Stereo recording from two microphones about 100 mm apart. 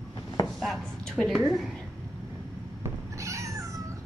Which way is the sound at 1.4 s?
Centre (ahead or behind).